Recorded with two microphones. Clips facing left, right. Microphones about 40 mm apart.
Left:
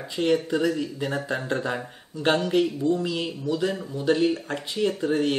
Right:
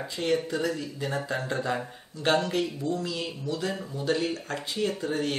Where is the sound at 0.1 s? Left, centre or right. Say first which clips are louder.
Left 5 dB; centre.